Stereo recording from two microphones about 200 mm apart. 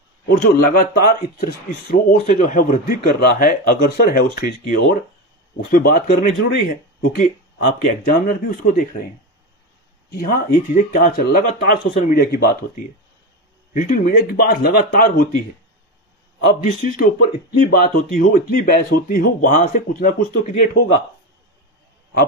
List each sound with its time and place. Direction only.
0.4 s speech: 50° left (ahead or behind)
10.1 s speech: 45° left (ahead or behind)
11.9 s speech: 35° left (ahead or behind)
12.2 s speech: 50° left (ahead or behind)
13.7 s speech: 45° left (ahead or behind)
16.6 s speech: 40° left (ahead or behind)